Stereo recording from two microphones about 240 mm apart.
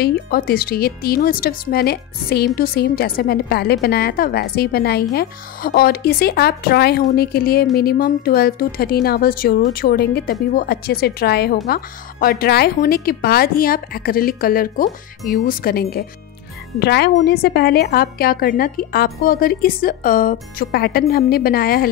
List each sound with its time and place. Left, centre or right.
0.0 s speech: left